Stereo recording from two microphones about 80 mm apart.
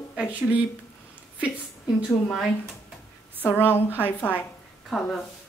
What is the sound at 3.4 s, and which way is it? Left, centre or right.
Speech, left.